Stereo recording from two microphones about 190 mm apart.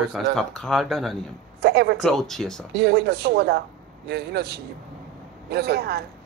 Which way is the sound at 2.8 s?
60° right (ahead or behind).